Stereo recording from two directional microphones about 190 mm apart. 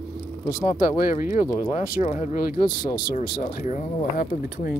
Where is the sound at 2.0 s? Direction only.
35° left (ahead or behind).